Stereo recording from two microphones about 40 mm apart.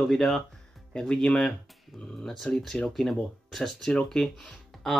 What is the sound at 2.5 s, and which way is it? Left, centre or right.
Speech, left.